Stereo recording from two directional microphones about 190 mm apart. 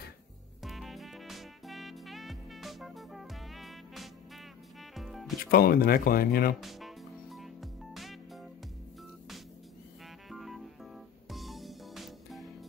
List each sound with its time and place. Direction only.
0.7 s music: centre (ahead or behind)
5.4 s speech: 50° left (ahead or behind)
6.6 s music: centre (ahead or behind)
10.3 s music: centre (ahead or behind)